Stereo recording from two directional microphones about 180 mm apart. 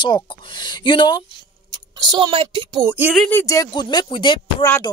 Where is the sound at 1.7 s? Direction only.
25° right (ahead or behind).